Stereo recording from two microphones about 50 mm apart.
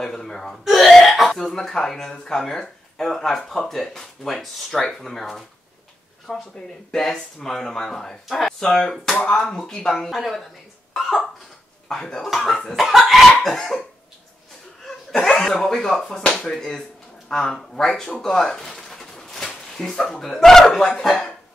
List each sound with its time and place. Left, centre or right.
0.0 s speech: centre
10.9 s cough: centre
11.9 s speech: centre
12.2 s cough: centre
14.9 s cough: centre
15.6 s speech: centre
16.5 s cough: centre
17.3 s speech: centre